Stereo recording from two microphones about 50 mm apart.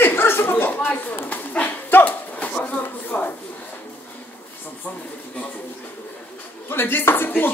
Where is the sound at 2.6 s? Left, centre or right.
Left.